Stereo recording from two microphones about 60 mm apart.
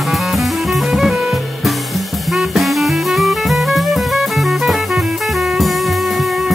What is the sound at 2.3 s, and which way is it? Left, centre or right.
Music, centre.